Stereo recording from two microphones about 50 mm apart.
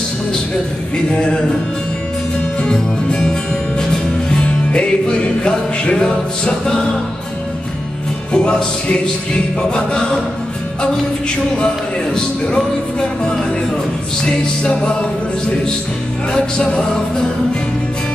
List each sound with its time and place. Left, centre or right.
1.1 s music: centre
2.6 s music: centre
4.4 s music: centre
8.3 s music: centre
12.2 s music: centre
14.2 s music: centre
16.3 s music: centre